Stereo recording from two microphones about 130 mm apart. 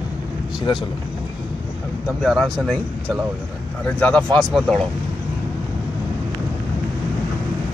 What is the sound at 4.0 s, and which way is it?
Speech, 10° left (ahead or behind).